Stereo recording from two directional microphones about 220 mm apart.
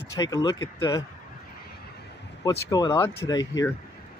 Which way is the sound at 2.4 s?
15° left (ahead or behind).